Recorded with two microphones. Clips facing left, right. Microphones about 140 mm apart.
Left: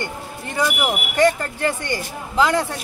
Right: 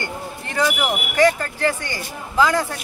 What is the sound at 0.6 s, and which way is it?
Speech, 15° left (ahead or behind).